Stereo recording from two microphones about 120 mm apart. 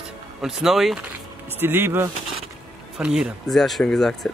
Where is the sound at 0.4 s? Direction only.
5° right (ahead or behind).